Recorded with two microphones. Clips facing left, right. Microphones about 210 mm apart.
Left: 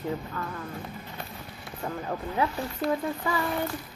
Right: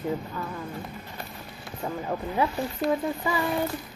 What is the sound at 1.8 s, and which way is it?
Speech, 5° right (ahead or behind).